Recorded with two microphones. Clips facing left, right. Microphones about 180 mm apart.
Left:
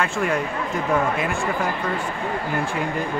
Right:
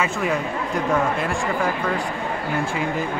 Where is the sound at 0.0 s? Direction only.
5° right (ahead or behind).